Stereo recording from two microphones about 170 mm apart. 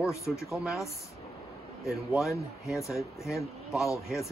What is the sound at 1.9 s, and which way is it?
Speech, centre (ahead or behind).